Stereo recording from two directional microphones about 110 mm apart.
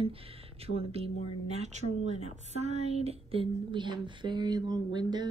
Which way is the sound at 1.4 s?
85° right.